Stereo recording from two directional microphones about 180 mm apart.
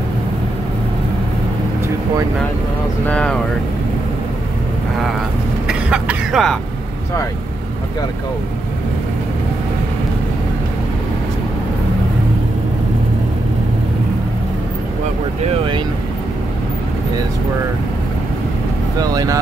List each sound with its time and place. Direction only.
3.1 s speech: 5° left (ahead or behind)
5.7 s cough: 5° right (ahead or behind)
18.9 s speech: 20° right (ahead or behind)